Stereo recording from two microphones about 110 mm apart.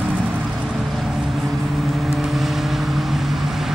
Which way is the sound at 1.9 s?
Centre (ahead or behind).